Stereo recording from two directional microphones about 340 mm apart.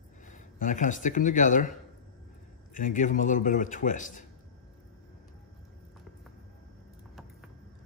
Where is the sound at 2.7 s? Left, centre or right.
Left.